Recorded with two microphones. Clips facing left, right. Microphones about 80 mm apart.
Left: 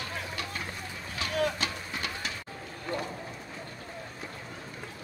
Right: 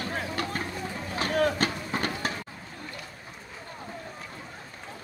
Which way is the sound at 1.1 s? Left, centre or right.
Right.